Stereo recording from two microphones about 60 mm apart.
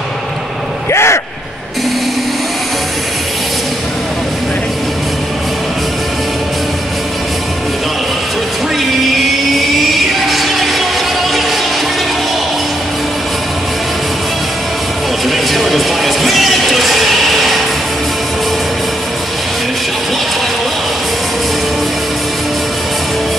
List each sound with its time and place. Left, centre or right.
0.9 s a sound: left
9.6 s music: centre
15.2 s music: centre